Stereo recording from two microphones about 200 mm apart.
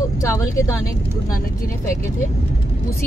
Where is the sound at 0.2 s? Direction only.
15° left (ahead or behind).